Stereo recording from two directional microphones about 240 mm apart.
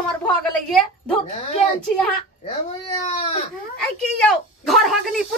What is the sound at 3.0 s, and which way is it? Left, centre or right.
Baby cry, left.